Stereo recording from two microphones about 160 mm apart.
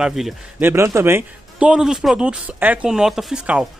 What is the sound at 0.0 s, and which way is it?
Speech, 5° right (ahead or behind).